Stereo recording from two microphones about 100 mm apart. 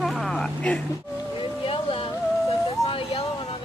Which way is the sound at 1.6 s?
70° left (ahead or behind).